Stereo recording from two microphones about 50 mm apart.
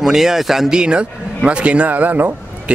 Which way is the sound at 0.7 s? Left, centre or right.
Centre.